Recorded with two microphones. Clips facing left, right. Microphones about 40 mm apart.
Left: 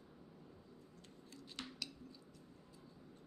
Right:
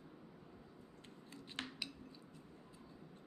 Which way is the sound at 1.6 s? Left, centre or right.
Right.